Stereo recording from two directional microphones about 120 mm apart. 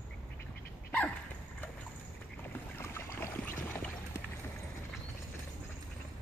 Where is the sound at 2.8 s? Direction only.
20° left (ahead or behind).